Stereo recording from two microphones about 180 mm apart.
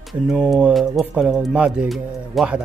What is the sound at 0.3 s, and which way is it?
Speech, 5° right (ahead or behind).